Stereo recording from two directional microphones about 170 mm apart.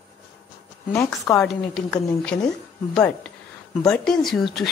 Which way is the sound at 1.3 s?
Centre (ahead or behind).